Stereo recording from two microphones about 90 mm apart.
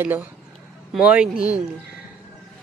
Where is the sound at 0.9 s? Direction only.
10° right (ahead or behind).